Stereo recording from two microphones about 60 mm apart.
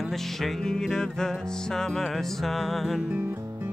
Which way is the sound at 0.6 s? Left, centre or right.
Centre.